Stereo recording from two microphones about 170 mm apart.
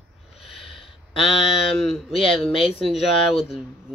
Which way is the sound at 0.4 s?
Centre (ahead or behind).